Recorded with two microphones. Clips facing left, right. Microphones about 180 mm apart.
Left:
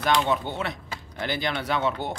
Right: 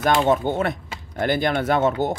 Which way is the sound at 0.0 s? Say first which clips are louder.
Right 5 dB; 45° right (ahead or behind).